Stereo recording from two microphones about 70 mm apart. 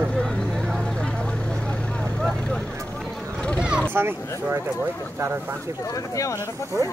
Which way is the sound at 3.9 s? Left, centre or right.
Right.